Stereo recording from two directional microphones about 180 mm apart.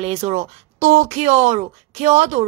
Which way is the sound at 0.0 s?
35° right (ahead or behind).